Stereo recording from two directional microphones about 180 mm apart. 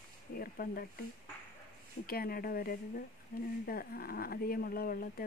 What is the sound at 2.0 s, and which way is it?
Speech, 55° left (ahead or behind).